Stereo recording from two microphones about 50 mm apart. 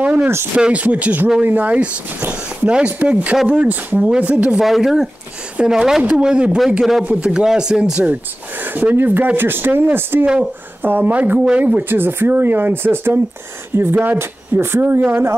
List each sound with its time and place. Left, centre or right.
0.0 s speech: right
0.6 s speech: right
4.6 s speech: centre
6.0 s speech: right
6.8 s speech: centre
7.1 s speech: centre
8.9 s speech: right
10.2 s speech: centre
10.8 s speech: right
11.3 s speech: right
11.6 s speech: right